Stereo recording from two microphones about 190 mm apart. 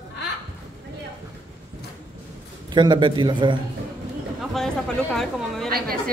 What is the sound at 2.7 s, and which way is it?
Speech, 25° right (ahead or behind).